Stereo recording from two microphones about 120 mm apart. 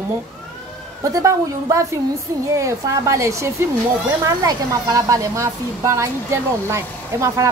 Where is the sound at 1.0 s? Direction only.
25° right (ahead or behind).